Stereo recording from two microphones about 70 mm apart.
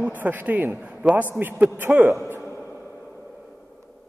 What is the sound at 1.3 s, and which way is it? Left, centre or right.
Speech, right.